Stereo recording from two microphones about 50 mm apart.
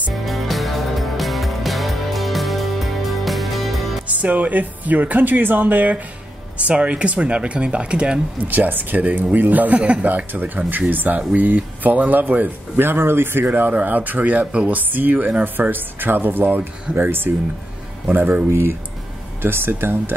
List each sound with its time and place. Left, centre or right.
0.1 s music: centre
4.2 s speech: right
6.6 s speech: right
8.4 s speech: right
12.8 s speech: right
14.7 s speech: right
18.5 s speech: right